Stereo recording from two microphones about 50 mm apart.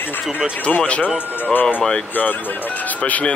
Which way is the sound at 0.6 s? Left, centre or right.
Left.